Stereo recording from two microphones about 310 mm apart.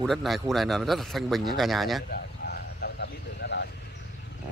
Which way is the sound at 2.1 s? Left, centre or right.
Left.